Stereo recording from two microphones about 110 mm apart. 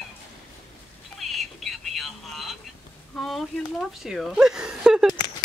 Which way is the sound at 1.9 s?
Centre (ahead or behind).